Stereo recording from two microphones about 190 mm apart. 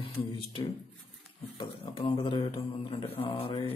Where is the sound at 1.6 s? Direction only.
25° left (ahead or behind).